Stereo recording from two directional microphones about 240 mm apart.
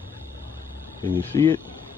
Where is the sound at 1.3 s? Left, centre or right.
Centre.